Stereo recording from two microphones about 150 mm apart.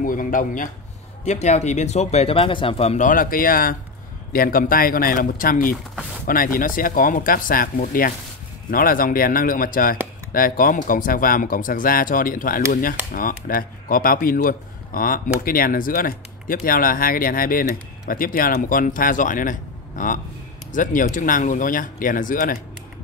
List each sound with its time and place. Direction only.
0.0 s speech: 65° left (ahead or behind)
1.2 s speech: 50° left (ahead or behind)